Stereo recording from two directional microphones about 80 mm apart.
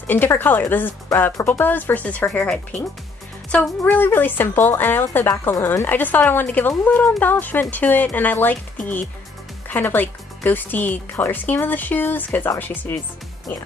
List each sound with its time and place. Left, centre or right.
0.0 s speech: left
3.8 s speech: left